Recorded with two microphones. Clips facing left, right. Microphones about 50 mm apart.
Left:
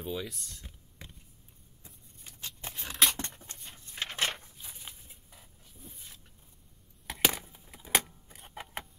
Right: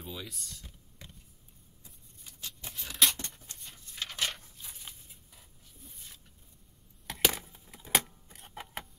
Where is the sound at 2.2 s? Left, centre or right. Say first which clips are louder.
Left 2 dB; left.